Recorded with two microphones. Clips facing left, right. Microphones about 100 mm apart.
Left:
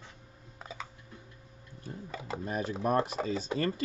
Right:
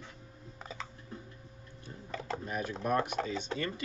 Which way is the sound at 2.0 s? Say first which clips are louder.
Right 2 dB; 5° left (ahead or behind).